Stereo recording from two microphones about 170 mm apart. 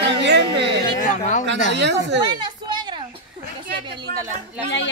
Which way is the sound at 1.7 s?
90° right.